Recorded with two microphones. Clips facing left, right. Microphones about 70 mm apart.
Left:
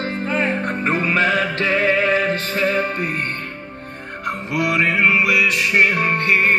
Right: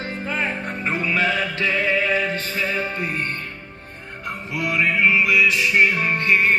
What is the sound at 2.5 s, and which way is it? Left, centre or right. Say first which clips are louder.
Music: left 5 dB; left.